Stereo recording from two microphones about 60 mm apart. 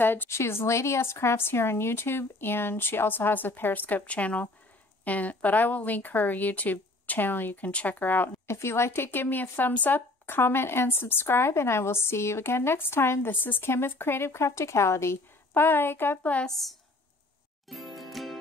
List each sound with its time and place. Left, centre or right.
0.0 s speech: left
0.4 s speech: left
8.5 s speech: left
16.4 s a woman's voice: centre
17.6 s music: centre